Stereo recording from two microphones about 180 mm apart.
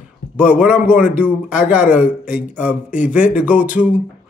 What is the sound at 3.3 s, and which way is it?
Speech, 5° right (ahead or behind).